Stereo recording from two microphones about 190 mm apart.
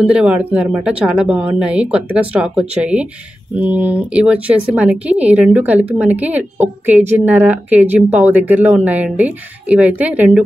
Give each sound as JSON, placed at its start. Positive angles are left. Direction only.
{"t": 0.0, "sound": "speech", "side_deg": -5}